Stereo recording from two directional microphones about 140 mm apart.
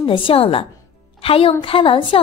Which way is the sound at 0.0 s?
40° left (ahead or behind).